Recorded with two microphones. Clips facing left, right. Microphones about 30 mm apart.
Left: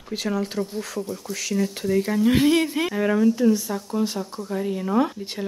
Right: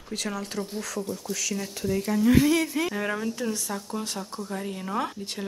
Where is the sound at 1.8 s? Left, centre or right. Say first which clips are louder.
Left 2 dB; centre.